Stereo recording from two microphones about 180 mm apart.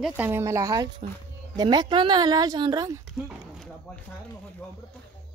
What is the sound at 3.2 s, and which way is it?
Speech, centre (ahead or behind).